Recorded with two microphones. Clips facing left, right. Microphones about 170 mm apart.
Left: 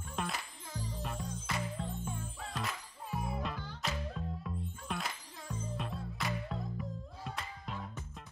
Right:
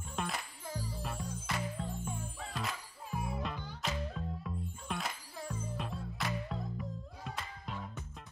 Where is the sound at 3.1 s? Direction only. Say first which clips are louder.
Even; 5° left (ahead or behind).